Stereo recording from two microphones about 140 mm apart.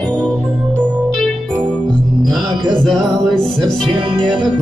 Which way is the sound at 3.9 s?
35° right (ahead or behind).